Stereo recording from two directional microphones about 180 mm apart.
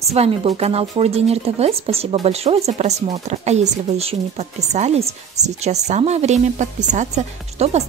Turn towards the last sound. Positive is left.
turn(degrees=-35)  # may be behind; listen again after turning